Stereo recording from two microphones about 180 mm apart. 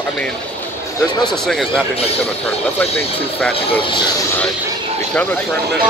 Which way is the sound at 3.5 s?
30° left (ahead or behind).